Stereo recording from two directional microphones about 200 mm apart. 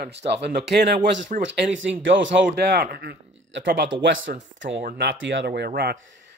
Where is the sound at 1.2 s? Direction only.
45° right (ahead or behind).